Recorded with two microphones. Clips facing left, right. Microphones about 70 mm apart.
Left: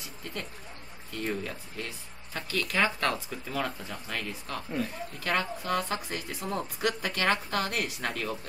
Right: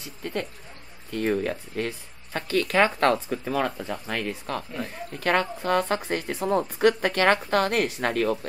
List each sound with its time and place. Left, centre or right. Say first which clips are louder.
0.0 s speech: right 8 dB; right